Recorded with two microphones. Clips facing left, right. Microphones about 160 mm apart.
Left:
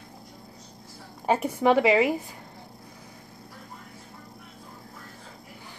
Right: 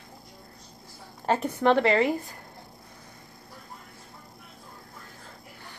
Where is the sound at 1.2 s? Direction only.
10° left (ahead or behind).